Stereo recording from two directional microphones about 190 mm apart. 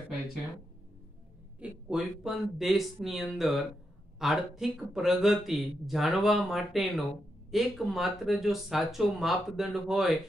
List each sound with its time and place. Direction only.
1.6 s a man's voice: 5° right (ahead or behind)